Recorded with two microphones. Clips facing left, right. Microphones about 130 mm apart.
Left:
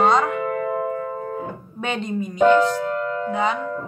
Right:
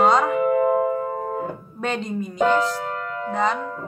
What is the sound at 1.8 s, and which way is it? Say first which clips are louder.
Music: even; centre (ahead or behind).